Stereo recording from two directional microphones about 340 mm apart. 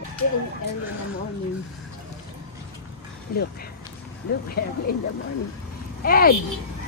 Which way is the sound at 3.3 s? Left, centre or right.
Left.